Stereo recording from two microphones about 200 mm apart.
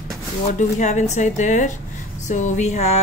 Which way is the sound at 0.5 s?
35° left (ahead or behind).